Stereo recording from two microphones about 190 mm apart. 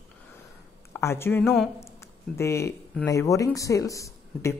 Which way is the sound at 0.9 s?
10° left (ahead or behind).